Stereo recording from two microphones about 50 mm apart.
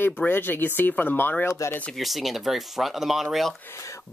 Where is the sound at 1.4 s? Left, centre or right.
Left.